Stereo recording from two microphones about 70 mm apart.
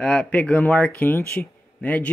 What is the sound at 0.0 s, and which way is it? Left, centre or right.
Speech, centre.